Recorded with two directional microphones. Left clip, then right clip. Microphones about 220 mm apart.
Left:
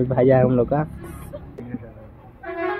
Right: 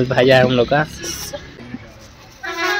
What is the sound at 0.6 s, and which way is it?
Speech, 10° right (ahead or behind).